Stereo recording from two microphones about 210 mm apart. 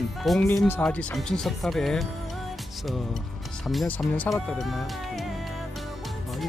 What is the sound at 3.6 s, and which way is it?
Speech, 5° left (ahead or behind).